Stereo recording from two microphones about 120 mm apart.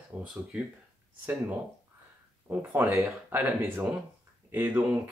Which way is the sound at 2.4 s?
15° right (ahead or behind).